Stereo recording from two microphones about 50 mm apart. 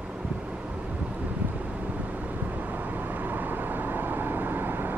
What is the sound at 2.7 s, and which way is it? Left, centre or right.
Vehicle, right.